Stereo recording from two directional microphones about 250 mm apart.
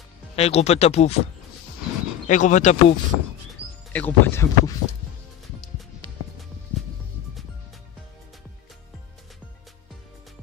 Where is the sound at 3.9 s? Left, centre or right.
Centre.